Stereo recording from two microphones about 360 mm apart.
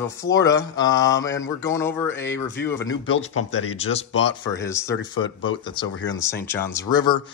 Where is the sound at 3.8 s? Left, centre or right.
Centre.